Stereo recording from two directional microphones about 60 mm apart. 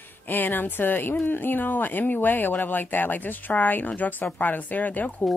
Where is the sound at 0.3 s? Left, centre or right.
Left.